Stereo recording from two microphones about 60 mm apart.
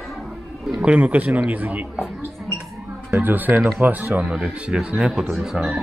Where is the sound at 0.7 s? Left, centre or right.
Right.